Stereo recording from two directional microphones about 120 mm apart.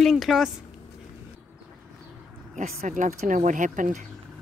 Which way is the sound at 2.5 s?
90° right.